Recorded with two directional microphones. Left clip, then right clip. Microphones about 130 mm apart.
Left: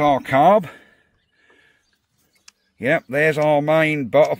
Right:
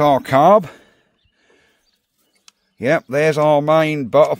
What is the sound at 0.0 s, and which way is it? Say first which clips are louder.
Speech: right 3 dB; 60° right (ahead or behind).